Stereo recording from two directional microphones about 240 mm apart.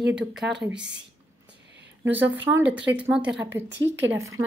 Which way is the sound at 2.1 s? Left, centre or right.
Right.